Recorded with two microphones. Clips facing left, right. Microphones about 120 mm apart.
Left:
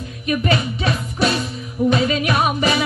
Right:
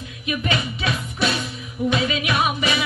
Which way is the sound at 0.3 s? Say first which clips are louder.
Left 5 dB; 40° left (ahead or behind).